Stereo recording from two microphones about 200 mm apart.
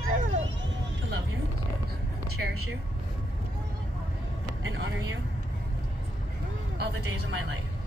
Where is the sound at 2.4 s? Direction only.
60° right (ahead or behind).